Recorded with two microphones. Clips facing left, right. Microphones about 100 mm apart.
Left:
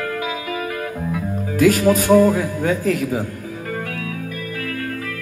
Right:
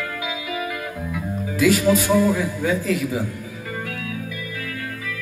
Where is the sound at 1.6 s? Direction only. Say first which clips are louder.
Left 3 dB; 45° left (ahead or behind).